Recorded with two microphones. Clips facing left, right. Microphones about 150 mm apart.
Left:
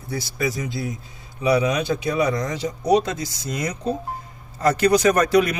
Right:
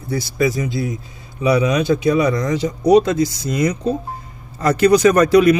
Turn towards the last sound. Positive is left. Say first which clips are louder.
# right 6 dB
turn(degrees=-90)